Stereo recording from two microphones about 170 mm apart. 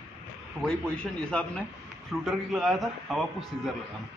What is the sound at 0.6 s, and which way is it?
A man's voice, 5° left (ahead or behind).